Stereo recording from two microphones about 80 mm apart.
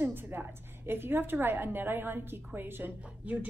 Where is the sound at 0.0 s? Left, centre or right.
Right.